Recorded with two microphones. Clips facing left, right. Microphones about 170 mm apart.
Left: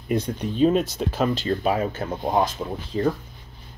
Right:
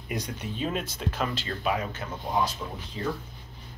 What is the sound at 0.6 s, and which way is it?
Speech, 40° left (ahead or behind).